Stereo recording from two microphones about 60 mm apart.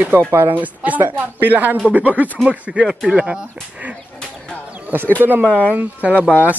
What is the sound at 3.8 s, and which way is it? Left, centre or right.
Speech, right.